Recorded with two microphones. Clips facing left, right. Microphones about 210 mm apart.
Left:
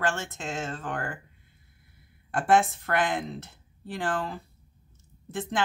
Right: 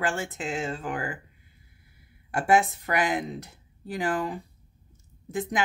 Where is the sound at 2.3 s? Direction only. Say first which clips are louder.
Even; 10° right (ahead or behind).